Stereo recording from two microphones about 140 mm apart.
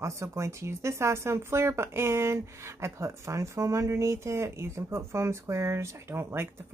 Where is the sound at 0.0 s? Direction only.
20° right (ahead or behind).